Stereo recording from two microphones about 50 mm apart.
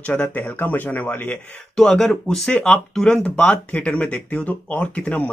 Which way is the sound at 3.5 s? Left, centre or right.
Left.